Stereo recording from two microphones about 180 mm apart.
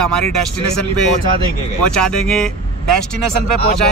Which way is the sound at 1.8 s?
5° left (ahead or behind).